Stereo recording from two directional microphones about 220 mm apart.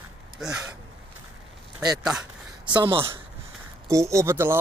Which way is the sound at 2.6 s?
20° right (ahead or behind).